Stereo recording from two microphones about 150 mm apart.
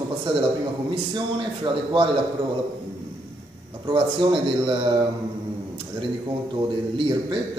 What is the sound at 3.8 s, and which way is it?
Speech, 35° right (ahead or behind).